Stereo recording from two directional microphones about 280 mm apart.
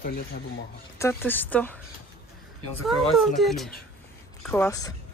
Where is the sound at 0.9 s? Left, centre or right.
Centre.